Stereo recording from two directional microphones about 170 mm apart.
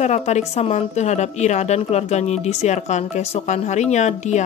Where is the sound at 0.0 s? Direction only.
40° left (ahead or behind).